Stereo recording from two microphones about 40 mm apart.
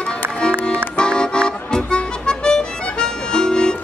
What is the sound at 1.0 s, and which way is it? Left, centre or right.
Music, left.